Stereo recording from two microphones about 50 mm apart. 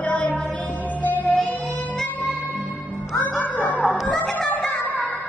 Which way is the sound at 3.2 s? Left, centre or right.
Left.